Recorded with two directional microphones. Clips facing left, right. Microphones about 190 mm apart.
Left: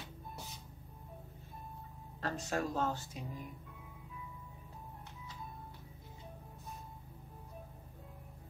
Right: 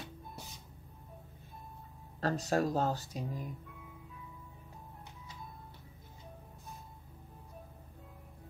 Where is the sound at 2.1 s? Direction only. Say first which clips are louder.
Right 6 dB; 35° right (ahead or behind).